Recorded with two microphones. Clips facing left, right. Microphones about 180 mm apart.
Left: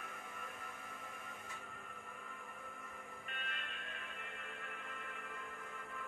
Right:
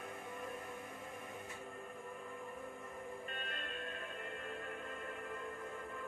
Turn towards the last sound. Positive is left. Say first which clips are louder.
# right 6 dB
turn(degrees=-35)  # may be behind; listen again after turning